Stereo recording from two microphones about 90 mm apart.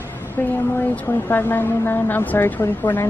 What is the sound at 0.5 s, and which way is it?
Speech, 20° left (ahead or behind).